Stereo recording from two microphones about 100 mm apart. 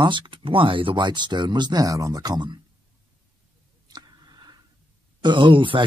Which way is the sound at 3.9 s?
45° right (ahead or behind).